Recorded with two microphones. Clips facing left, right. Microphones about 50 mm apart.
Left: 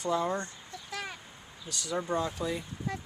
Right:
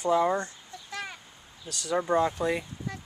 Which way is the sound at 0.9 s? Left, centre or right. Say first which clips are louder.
Right 2 dB; centre.